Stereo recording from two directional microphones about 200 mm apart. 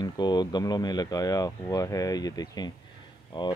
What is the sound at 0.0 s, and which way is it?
Speech, 20° left (ahead or behind).